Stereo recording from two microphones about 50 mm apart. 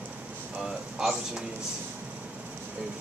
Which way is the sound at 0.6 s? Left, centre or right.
Centre.